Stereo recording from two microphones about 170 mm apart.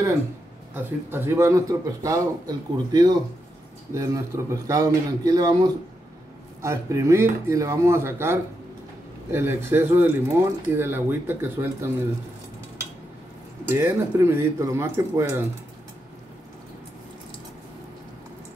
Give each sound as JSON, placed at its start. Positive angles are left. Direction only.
{"t": 0.7, "sound": "a man's voice", "side_deg": -15}
{"t": 13.7, "sound": "speech", "side_deg": -15}